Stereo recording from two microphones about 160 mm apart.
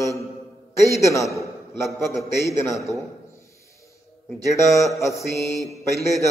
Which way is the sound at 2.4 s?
20° left (ahead or behind).